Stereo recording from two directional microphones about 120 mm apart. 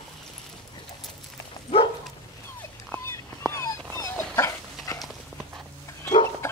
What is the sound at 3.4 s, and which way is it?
Dog, 25° left (ahead or behind).